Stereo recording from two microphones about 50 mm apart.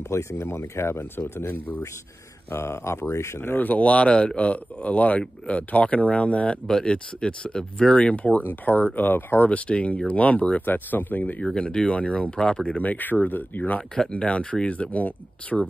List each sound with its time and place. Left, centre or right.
0.1 s speech: left
2.5 s speech: left
3.3 s speech: left
3.6 s speech: left
9.5 s speech: left
10.6 s speech: left
11.5 s speech: centre
12.8 s speech: left